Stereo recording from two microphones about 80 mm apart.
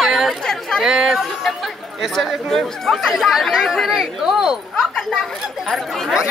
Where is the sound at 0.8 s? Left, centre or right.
Centre.